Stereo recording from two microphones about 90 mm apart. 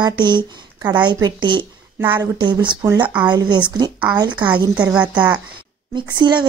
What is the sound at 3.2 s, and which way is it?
Speech, 55° right (ahead or behind).